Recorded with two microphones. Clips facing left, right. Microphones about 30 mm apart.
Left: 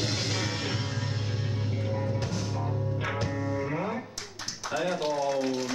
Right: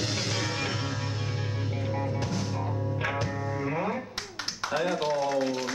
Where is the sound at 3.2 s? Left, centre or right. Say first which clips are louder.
Even; centre.